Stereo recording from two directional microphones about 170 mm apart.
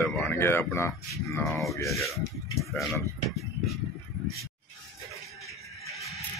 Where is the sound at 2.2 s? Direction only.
20° left (ahead or behind).